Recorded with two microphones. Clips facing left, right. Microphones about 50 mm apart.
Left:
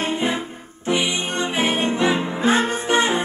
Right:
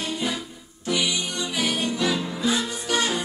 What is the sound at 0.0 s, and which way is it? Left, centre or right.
Music, left.